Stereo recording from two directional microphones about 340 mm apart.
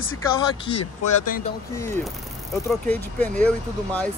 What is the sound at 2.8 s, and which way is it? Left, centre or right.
Speech, centre.